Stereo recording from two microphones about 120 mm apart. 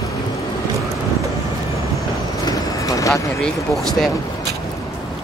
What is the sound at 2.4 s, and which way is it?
Vehicle, 25° left (ahead or behind).